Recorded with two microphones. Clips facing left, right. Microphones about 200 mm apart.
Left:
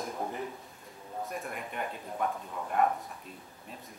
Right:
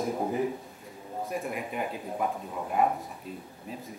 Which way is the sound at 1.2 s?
Centre (ahead or behind).